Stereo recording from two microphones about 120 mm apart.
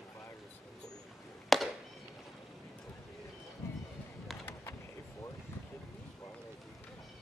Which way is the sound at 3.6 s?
20° left (ahead or behind).